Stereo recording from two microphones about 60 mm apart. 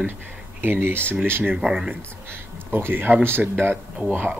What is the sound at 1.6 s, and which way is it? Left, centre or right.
Speech, centre.